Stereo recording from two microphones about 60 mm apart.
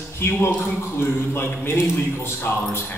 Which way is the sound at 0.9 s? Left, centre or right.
Left.